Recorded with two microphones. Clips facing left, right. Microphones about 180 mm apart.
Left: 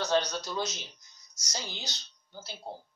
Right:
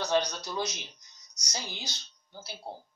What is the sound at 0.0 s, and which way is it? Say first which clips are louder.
Speech: even; 15° right (ahead or behind).